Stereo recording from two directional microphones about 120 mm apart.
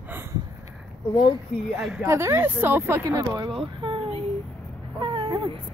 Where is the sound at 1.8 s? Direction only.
5° right (ahead or behind).